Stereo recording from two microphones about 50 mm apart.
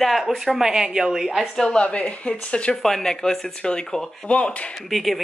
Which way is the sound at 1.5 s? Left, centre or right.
Centre.